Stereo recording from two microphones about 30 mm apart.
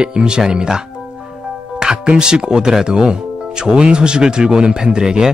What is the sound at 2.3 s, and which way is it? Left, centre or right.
Speech, right.